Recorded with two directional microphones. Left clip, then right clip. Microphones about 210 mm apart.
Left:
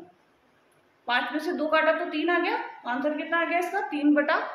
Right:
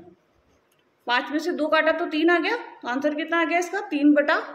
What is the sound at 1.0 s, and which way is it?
A woman's voice, 40° right (ahead or behind).